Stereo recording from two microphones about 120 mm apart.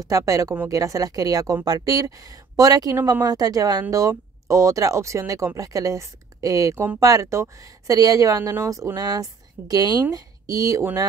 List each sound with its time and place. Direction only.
0.0 s a woman's voice: 25° right (ahead or behind)